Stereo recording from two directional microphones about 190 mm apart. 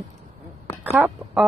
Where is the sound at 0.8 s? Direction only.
10° right (ahead or behind).